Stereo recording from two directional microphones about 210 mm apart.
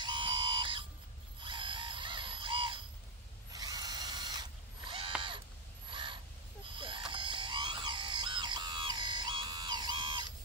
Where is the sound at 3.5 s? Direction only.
20° right (ahead or behind).